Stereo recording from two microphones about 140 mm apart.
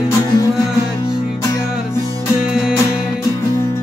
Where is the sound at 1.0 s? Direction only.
30° left (ahead or behind).